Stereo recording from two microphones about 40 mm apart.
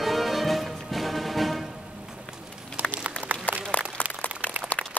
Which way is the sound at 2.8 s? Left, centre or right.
Right.